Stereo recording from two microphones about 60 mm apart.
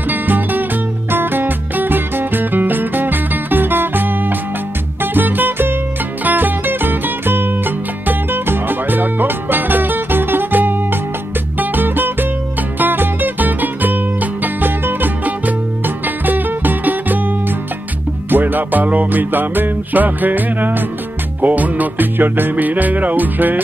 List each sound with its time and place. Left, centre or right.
0.1 s music: right
18.3 s music: right